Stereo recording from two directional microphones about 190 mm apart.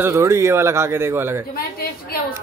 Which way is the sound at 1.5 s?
55° left (ahead or behind).